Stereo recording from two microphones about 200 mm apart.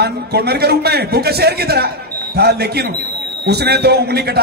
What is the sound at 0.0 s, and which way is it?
A man's voice, 55° right (ahead or behind).